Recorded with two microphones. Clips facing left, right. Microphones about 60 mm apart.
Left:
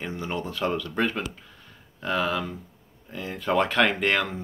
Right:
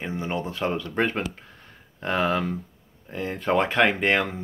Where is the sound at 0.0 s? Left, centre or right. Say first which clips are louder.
Right 2 dB; right.